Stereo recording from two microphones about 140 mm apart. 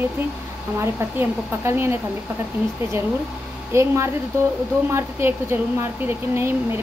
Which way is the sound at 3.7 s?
20° right (ahead or behind).